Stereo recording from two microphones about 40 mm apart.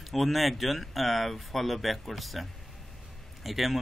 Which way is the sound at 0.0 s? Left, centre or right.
Centre.